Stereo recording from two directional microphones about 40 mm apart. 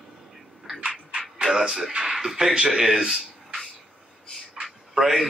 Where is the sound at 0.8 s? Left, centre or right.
Right.